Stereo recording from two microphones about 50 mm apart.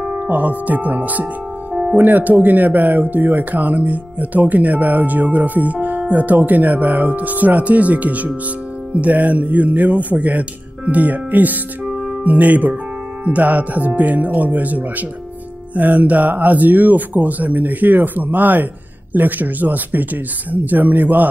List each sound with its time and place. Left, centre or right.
0.3 s speech: right